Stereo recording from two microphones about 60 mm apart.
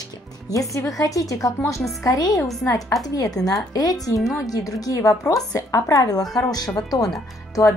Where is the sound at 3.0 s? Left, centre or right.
Left.